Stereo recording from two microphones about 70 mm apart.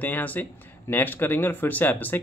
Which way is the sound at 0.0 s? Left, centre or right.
Left.